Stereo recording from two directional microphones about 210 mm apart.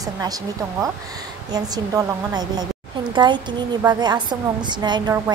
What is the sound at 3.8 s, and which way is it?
A woman's voice, 20° right (ahead or behind).